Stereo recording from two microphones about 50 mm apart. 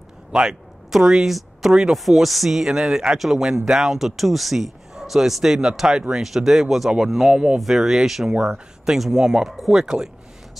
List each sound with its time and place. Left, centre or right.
0.3 s a man's voice: centre
9.8 s a man's voice: centre